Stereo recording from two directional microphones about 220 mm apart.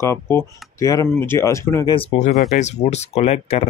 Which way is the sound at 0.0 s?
15° left (ahead or behind).